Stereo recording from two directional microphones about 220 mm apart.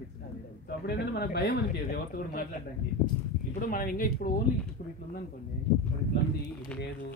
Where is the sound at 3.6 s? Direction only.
40° left (ahead or behind).